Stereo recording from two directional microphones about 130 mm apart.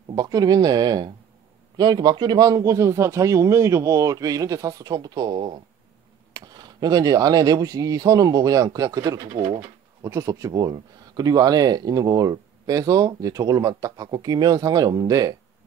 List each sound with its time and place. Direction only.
0.1 s speech: 30° right (ahead or behind)